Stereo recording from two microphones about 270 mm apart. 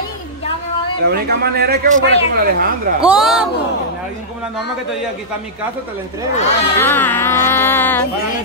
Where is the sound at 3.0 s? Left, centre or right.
Centre.